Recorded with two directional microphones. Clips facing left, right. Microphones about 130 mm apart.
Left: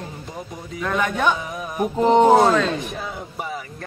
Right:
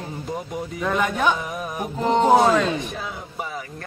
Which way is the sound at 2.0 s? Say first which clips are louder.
Left 4 dB; 15° left (ahead or behind).